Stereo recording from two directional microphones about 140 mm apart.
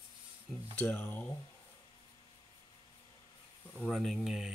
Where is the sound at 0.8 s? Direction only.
10° left (ahead or behind).